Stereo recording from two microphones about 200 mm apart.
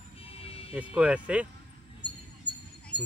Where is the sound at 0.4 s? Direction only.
30° left (ahead or behind).